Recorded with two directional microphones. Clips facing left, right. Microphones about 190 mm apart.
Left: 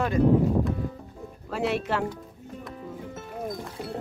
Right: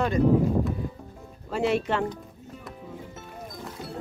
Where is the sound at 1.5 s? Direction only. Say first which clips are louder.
Right 2 dB; centre (ahead or behind).